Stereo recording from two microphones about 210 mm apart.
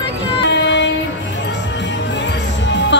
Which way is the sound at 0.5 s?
55° left (ahead or behind).